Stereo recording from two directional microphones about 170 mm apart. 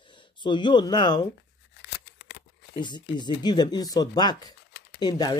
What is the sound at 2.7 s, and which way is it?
Speech, 25° left (ahead or behind).